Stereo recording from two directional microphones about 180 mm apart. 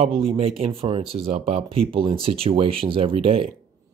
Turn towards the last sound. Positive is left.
turn(degrees=-30)  # may be behind; listen again after turning